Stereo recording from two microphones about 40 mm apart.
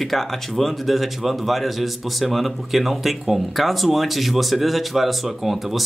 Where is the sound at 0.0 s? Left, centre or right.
Centre.